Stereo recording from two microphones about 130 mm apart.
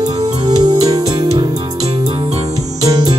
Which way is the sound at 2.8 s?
30° right (ahead or behind).